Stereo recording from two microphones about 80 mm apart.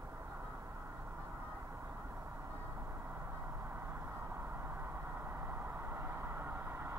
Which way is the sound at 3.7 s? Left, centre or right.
Right.